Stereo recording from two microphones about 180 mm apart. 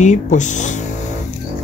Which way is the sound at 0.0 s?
40° left (ahead or behind).